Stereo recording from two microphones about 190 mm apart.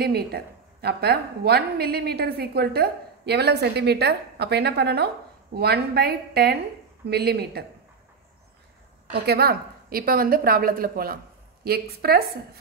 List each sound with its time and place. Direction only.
0.0 s a woman's voice: 55° right (ahead or behind)
9.1 s a woman's voice: 55° right (ahead or behind)